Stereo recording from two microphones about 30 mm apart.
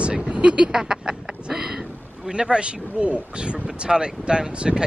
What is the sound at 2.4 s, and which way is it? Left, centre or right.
Speech, right.